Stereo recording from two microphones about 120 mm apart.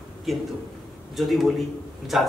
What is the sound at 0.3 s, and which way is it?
A man's voice, centre (ahead or behind).